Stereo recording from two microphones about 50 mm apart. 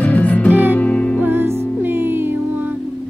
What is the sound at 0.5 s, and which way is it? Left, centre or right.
Music, right.